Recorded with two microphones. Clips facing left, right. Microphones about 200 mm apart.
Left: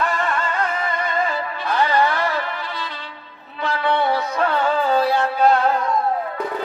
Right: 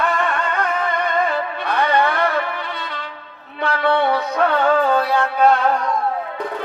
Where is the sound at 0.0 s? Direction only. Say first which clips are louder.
Right 2 dB; 60° right (ahead or behind).